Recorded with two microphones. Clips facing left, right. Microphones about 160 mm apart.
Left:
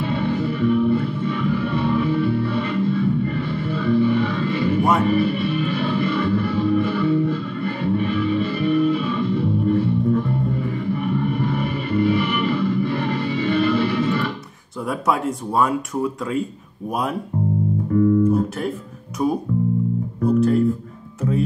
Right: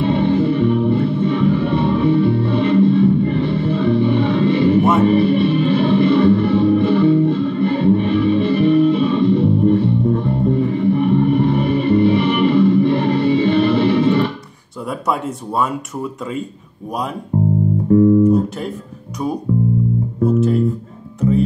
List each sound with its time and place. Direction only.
0.0 s music: 30° right (ahead or behind)
14.9 s speech: centre (ahead or behind)
17.3 s music: 40° right (ahead or behind)
17.9 s music: 25° right (ahead or behind)
19.2 s speech: centre (ahead or behind)